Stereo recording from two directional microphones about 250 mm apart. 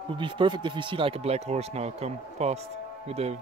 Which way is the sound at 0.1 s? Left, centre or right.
Centre.